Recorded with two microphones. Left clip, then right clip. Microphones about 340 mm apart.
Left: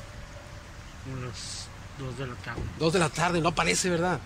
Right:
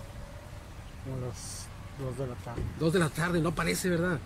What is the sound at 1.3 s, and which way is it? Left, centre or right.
Speech, centre.